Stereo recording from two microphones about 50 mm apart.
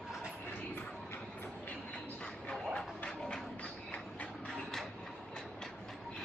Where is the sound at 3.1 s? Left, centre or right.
Centre.